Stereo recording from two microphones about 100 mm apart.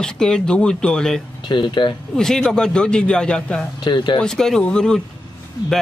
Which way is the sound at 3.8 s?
50° left (ahead or behind).